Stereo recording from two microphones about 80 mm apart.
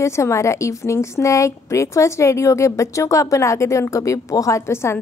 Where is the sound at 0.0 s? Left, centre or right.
Left.